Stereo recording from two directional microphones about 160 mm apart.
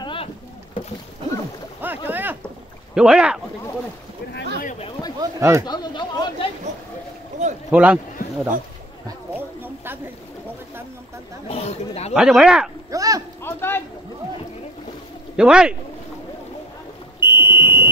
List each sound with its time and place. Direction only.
0.0 s rowboat: 35° left (ahead or behind)
1.8 s boat: 10° right (ahead or behind)
2.9 s speech: 5° right (ahead or behind)
5.2 s a sound: 20° right (ahead or behind)
5.7 s chatter: 25° left (ahead or behind)
7.4 s boat: 45° right (ahead or behind)
7.7 s speech: 10° right (ahead or behind)
9.3 s a sound: 10° right (ahead or behind)
11.4 s speech: 40° left (ahead or behind)
12.1 s speech: centre (ahead or behind)
12.9 s a sound: 20° right (ahead or behind)
13.4 s a sound: 15° left (ahead or behind)
15.3 s speech: 5° right (ahead or behind)
17.2 s fire alarm: 15° right (ahead or behind)